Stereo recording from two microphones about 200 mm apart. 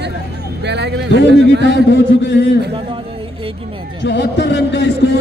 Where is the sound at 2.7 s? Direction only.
25° right (ahead or behind).